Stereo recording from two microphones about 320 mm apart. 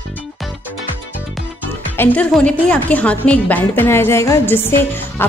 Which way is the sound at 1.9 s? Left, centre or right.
Centre.